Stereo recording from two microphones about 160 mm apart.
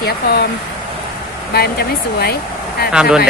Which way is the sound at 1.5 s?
75° left (ahead or behind).